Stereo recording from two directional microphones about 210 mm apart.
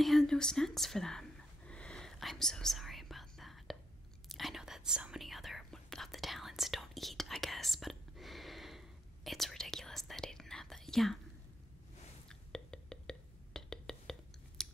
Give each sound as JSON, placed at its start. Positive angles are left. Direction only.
{"t": 0.0, "sound": "speech", "side_deg": 0}
{"t": 1.7, "sound": "whispering", "side_deg": 5}
{"t": 12.3, "sound": "whispering", "side_deg": 5}
{"t": 14.6, "sound": "scissors", "side_deg": 0}